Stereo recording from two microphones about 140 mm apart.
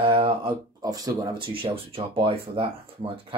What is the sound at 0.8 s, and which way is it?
Speech, 25° right (ahead or behind).